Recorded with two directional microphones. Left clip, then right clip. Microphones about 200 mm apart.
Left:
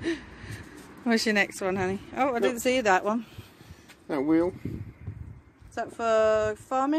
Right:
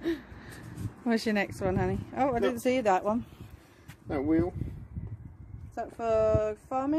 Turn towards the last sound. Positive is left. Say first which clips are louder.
# left 4 dB
turn(degrees=0)  # may be behind; listen again after turning